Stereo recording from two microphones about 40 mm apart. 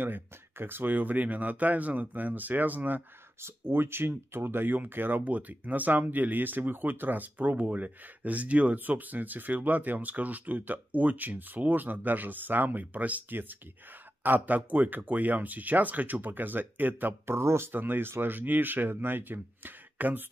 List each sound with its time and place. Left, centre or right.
0.0 s speech: right
3.3 s speech: right
5.2 s speech: right
8.7 s speech: right
13.3 s speech: right
14.2 s speech: right
17.3 s speech: right